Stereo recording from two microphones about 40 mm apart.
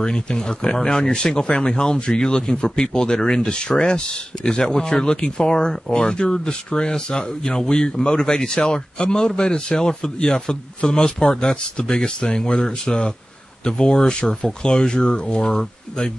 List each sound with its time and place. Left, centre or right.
0.0 s speech: centre